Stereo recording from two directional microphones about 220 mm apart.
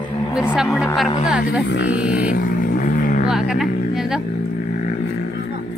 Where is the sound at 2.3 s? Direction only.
35° left (ahead or behind).